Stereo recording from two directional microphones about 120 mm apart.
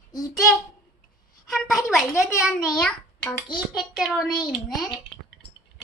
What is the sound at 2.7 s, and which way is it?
Speech, 5° left (ahead or behind).